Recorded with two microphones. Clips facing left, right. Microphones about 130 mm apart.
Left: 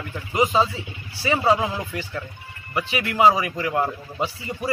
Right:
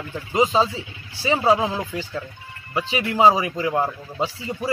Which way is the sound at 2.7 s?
20° right (ahead or behind).